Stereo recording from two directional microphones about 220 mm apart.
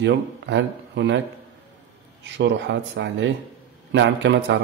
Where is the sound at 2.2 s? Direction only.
55° right (ahead or behind).